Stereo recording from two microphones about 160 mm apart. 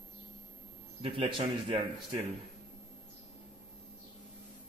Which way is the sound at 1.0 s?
35° right (ahead or behind).